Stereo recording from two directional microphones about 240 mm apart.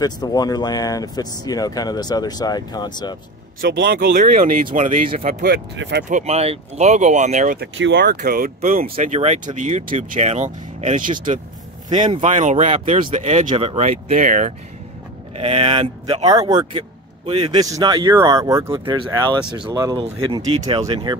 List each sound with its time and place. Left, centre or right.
0.0 s speech: centre
3.6 s speech: right
6.0 s speech: right
7.6 s speech: right
8.9 s speech: right